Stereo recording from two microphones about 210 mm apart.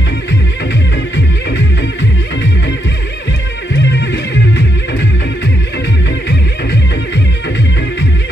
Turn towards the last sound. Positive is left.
turn(degrees=55)  # may be behind; listen again after turning